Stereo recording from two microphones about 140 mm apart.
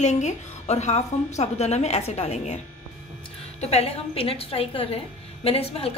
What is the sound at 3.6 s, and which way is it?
A woman's voice, 50° left (ahead or behind).